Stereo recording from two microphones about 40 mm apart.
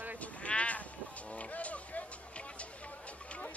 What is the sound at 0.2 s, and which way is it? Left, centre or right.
Sheep, left.